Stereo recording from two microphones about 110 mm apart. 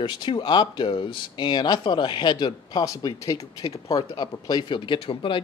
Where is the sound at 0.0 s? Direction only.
45° left (ahead or behind).